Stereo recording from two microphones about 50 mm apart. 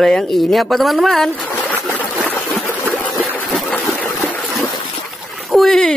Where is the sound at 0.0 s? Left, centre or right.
Centre.